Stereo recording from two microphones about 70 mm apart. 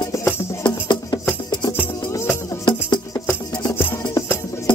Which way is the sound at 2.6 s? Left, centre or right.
Left.